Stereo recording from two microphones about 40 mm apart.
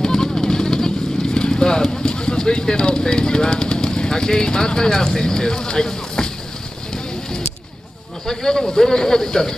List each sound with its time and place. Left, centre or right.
0.0 s vehicle: centre
8.3 s speech: centre